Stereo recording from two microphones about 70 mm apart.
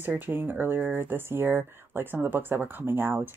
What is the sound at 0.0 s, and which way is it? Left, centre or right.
Speech, right.